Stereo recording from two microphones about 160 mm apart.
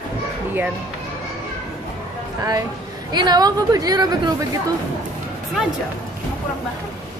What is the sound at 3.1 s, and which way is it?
A woman's voice, 25° right (ahead or behind).